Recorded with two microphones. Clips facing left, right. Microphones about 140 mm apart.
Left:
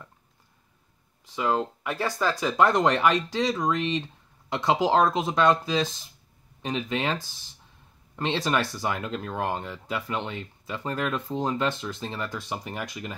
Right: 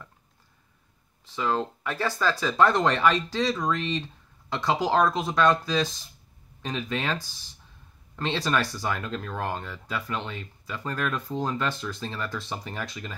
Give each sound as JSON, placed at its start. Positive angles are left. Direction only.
{"t": 1.2, "sound": "speech", "side_deg": 15}